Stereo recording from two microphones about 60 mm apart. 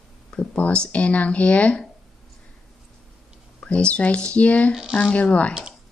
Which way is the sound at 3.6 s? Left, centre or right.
Centre.